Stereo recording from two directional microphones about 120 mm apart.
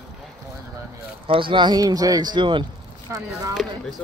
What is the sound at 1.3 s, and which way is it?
Speech, 45° right (ahead or behind).